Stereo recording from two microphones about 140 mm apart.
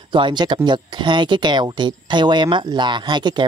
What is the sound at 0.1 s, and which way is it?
Speech, 35° right (ahead or behind).